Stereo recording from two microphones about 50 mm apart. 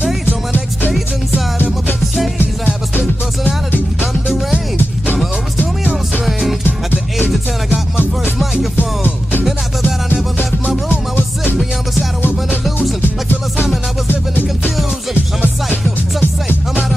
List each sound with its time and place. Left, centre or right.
1.3 s music: left
4.0 s music: centre
5.6 s music: left
8.7 s music: left
10.9 s music: left
14.0 s music: left